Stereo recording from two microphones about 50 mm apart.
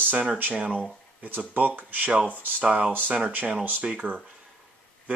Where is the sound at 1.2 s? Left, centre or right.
Right.